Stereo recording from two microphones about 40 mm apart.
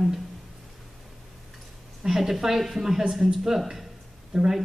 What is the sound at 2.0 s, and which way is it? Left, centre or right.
A woman's voice, centre.